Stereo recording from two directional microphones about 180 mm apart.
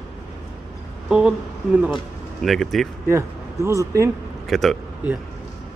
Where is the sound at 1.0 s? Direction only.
5° right (ahead or behind).